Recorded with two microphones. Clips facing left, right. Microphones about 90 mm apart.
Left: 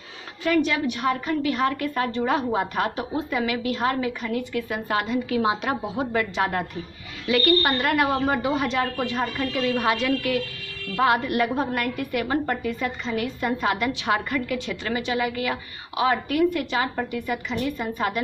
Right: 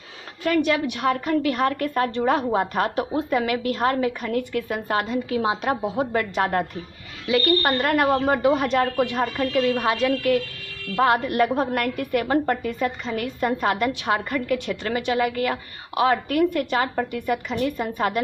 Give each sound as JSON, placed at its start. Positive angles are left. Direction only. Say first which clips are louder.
{"t": 0.4, "sound": "a woman's voice", "louder": "right 1 dB", "side_deg": -55}
{"t": 4.8, "sound": "a woman's voice", "louder": "right 1 dB", "side_deg": -35}
{"t": 7.2, "sound": "a woman's voice", "louder": "even", "side_deg": -25}
{"t": 7.6, "sound": "a woman's voice", "louder": "right 2 dB", "side_deg": -40}
{"t": 9.8, "sound": "a woman's voice", "louder": "right 1 dB", "side_deg": -35}